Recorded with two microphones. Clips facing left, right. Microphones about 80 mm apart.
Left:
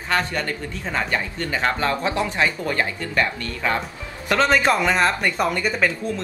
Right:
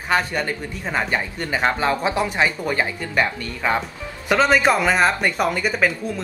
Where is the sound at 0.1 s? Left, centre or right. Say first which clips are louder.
Right 2 dB; centre.